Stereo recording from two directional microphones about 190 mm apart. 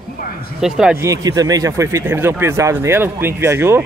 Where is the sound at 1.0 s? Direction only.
20° right (ahead or behind).